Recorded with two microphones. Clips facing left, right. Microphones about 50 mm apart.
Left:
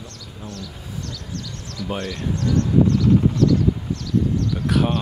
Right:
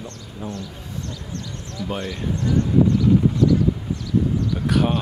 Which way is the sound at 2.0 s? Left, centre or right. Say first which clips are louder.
Left 1 dB; centre.